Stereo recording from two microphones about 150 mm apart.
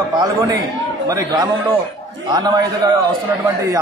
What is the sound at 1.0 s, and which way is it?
Speech, 25° right (ahead or behind).